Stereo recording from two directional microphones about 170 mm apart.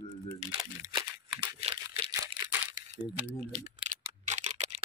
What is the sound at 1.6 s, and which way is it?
Crumpling, 30° right (ahead or behind).